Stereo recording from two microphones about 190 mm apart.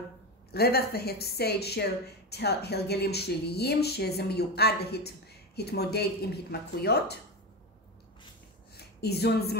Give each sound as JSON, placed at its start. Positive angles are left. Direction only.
{"t": 0.5, "sound": "a woman's voice", "side_deg": 55}
{"t": 8.7, "sound": "a woman's voice", "side_deg": 60}